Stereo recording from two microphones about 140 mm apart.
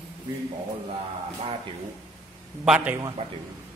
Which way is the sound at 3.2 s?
35° right (ahead or behind).